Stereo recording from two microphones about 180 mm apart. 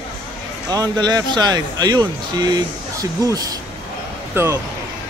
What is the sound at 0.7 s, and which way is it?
Speech, 20° right (ahead or behind).